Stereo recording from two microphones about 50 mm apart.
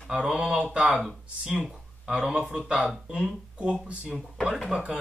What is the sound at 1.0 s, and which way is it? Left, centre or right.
Speech, centre.